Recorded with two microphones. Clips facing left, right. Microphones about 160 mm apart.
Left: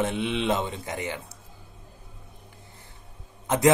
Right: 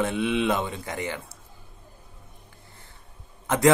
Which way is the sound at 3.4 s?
20° left (ahead or behind).